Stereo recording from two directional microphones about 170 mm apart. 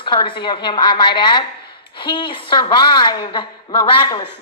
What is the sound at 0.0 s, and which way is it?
Speech, 30° left (ahead or behind).